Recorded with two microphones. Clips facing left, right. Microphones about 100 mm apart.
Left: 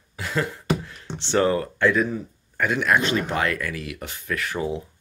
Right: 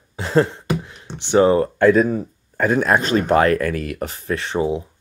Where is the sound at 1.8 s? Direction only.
45° right (ahead or behind).